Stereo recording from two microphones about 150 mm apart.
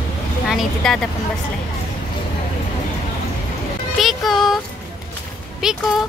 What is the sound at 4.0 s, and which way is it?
Child singing, centre (ahead or behind).